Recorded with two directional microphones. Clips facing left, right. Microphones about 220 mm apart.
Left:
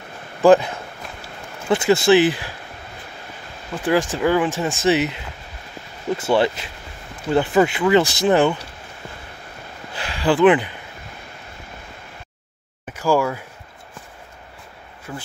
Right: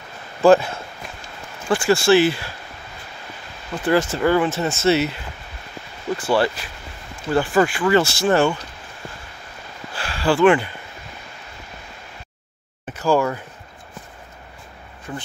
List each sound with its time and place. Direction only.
0.4 s speech: 15° left (ahead or behind)
3.7 s speech: 15° left (ahead or behind)
9.9 s a sound: 20° left (ahead or behind)
12.9 s speech: 10° left (ahead or behind)
15.1 s speech: centre (ahead or behind)